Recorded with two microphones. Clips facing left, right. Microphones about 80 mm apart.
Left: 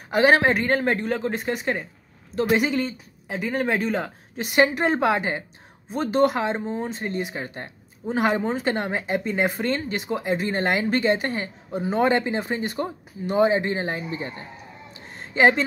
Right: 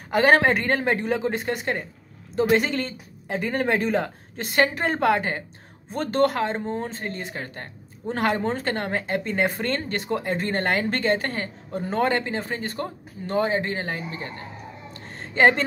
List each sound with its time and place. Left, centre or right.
0.1 s speech: centre
4.4 s speech: centre
15.1 s a sound: centre